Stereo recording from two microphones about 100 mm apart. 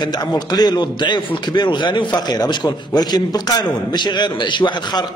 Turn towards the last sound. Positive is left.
turn(degrees=45)  # may be behind; listen again after turning